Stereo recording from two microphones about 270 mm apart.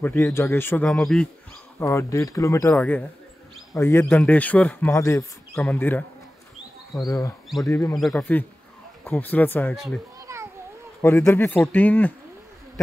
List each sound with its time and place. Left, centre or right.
0.0 s speech: centre
10.1 s a sound: centre
11.0 s speech: centre